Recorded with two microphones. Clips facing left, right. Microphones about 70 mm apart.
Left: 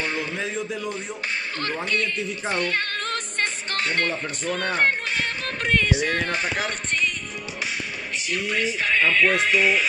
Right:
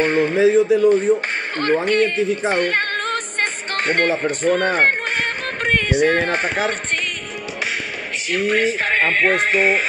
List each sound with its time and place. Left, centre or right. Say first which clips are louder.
0.0 s speech: right 11 dB; right
0.4 s speech: right 15 dB; centre
1.0 s music: right 11 dB; right
1.9 s speech: right 9 dB; right
2.5 s music: right 6 dB; right
6.1 s speech: right 6 dB; right
6.6 s speech: right 4 dB; right
8.3 s speech: right 8 dB; right